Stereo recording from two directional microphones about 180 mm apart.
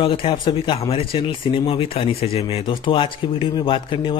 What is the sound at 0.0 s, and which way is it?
A man's voice, 30° left (ahead or behind).